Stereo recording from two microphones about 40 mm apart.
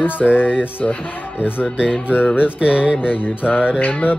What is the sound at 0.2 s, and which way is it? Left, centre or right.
Music, left.